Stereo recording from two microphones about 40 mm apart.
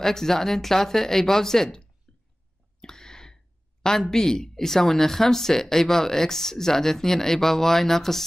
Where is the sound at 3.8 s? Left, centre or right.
Centre.